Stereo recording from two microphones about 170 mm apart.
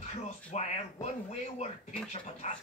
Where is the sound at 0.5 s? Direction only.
40° left (ahead or behind).